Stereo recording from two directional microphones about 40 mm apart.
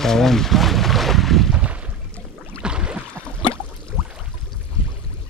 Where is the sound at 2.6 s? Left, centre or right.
Right.